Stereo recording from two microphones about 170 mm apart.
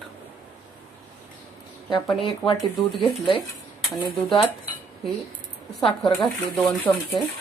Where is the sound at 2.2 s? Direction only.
30° left (ahead or behind).